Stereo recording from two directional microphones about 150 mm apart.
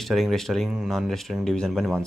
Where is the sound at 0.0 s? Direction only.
Centre (ahead or behind).